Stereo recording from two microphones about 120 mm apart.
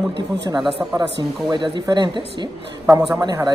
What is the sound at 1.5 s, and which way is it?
Speech, 40° right (ahead or behind).